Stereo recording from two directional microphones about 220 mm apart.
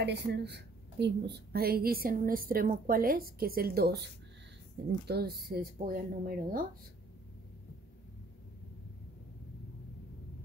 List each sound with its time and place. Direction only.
0.0 s a woman's voice: 50° right (ahead or behind)